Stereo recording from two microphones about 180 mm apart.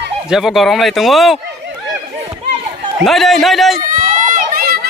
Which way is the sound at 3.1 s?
Centre (ahead or behind).